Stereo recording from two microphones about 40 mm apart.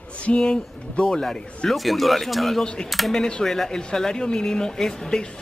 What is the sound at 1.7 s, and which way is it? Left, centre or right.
Speech, centre.